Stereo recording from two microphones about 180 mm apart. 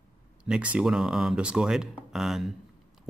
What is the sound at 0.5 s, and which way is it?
Speech, 5° right (ahead or behind).